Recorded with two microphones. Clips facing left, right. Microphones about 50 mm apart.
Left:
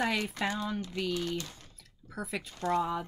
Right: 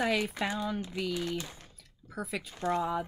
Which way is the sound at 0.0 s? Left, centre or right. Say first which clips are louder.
Right 1 dB; centre.